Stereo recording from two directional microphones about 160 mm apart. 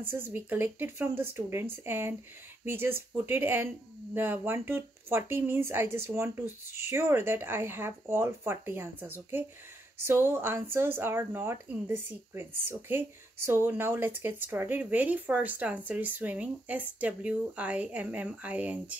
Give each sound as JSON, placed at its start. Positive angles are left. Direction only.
{"t": 0.1, "sound": "speech", "side_deg": -10}